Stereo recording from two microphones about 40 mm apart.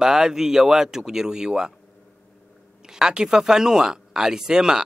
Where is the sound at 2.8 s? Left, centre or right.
Centre.